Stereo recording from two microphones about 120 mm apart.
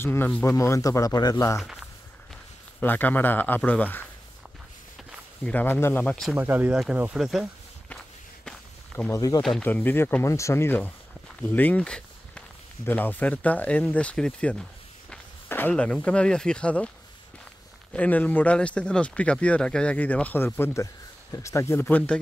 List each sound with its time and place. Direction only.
0.0 s speech: 20° left (ahead or behind)
1.6 s a sound: 5° right (ahead or behind)
2.8 s speech: 15° left (ahead or behind)
5.4 s speech: 15° left (ahead or behind)
6.3 s speech: 15° right (ahead or behind)
9.1 s speech: 30° left (ahead or behind)
9.6 s speech: 15° left (ahead or behind)
15.0 s walk: 15° left (ahead or behind)
15.7 s speech: 10° left (ahead or behind)
17.9 s speech: 10° left (ahead or behind)